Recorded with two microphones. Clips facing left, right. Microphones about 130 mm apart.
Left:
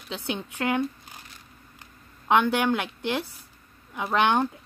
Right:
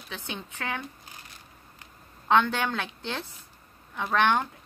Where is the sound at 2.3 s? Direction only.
15° left (ahead or behind).